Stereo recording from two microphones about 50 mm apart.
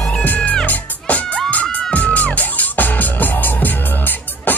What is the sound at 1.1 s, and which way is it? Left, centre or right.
Music, left.